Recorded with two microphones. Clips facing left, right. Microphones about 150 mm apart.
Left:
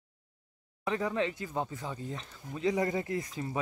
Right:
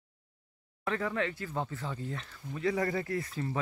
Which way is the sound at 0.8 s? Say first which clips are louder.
Left 1 dB; 20° left (ahead or behind).